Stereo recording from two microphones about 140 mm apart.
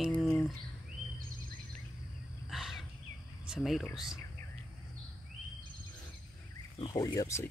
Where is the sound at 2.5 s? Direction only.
Centre (ahead or behind).